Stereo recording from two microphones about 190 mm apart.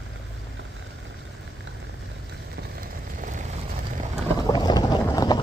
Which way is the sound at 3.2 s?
40° right (ahead or behind).